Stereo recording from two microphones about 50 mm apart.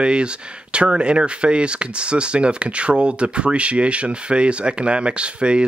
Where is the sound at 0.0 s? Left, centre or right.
Right.